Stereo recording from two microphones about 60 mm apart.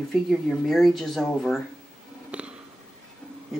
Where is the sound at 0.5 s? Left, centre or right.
Centre.